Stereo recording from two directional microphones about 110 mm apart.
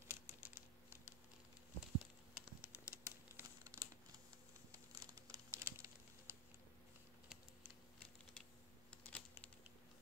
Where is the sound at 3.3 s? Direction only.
25° right (ahead or behind).